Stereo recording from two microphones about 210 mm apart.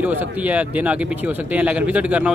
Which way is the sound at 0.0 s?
5° right (ahead or behind).